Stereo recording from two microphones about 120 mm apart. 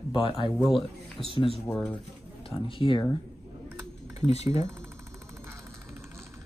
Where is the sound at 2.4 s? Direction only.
50° left (ahead or behind).